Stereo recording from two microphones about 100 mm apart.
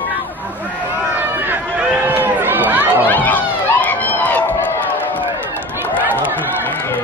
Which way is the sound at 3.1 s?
15° left (ahead or behind).